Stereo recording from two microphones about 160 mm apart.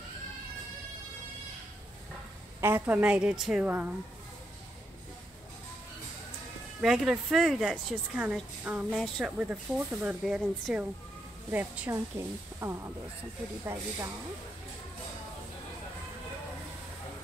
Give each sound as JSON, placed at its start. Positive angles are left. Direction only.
{"t": 2.6, "sound": "a woman's voice", "side_deg": -10}
{"t": 6.8, "sound": "a woman's voice", "side_deg": -5}